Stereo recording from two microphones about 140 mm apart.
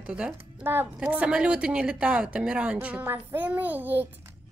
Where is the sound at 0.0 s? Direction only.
5° right (ahead or behind).